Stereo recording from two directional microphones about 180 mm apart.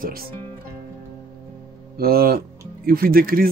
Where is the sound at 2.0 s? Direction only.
55° right (ahead or behind).